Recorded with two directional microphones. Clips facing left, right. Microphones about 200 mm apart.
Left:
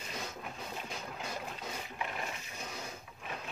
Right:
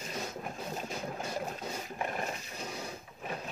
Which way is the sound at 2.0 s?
45° right (ahead or behind).